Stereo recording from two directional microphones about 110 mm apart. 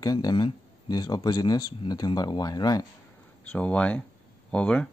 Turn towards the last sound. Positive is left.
turn(degrees=10)  # may be behind; listen again after turning